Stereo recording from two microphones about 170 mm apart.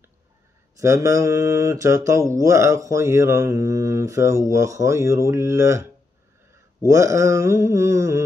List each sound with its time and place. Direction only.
0.7 s speech: 20° right (ahead or behind)
6.9 s speech: 20° right (ahead or behind)